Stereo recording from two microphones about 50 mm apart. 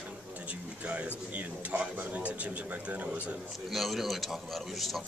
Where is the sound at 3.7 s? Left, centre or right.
Centre.